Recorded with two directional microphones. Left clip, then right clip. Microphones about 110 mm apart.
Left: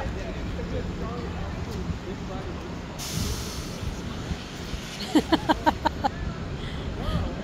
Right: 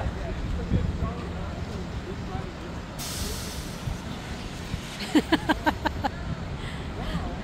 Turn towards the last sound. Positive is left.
turn(degrees=-25)  # may be behind; listen again after turning